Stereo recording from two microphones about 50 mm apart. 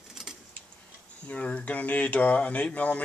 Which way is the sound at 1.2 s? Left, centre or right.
Left.